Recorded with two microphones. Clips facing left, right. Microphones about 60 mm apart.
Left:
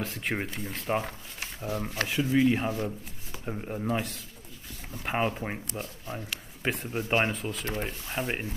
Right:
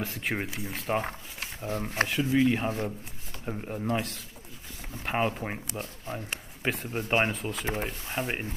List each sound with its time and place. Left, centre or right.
0.0 s speech: centre
1.7 s speech: right
2.0 s speech: centre
6.6 s speech: centre